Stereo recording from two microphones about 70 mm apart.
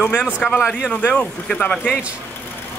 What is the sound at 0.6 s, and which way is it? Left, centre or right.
Speech, centre.